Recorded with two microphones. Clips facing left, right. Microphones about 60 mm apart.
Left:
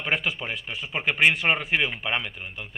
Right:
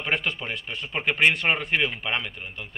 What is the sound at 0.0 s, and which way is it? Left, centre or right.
Speech, centre.